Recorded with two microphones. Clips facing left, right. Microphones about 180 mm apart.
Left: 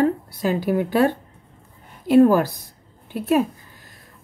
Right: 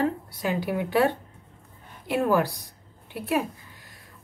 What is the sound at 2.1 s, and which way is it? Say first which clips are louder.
Speech: left 9 dB; 40° left (ahead or behind).